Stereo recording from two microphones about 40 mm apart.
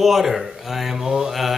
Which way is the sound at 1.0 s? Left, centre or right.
Centre.